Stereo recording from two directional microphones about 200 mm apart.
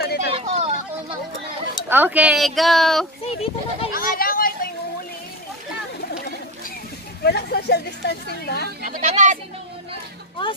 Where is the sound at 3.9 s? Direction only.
45° left (ahead or behind).